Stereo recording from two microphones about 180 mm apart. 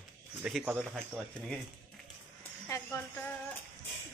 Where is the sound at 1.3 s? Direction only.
Centre (ahead or behind).